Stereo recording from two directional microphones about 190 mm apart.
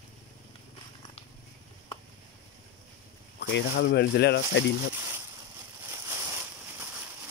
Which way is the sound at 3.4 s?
70° left (ahead or behind).